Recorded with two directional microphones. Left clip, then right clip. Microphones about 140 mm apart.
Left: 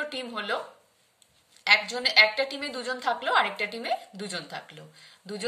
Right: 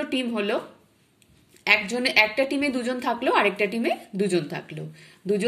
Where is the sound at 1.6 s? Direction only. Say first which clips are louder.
Right 1 dB; 20° right (ahead or behind).